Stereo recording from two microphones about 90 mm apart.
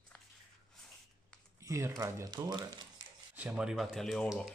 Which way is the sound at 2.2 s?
50° right (ahead or behind).